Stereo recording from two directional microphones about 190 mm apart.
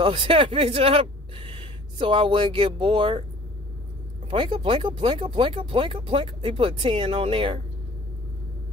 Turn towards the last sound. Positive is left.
turn(degrees=-25)  # may be behind; listen again after turning